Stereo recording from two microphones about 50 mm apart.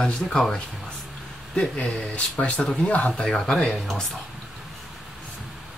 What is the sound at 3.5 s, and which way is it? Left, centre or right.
Speech, centre.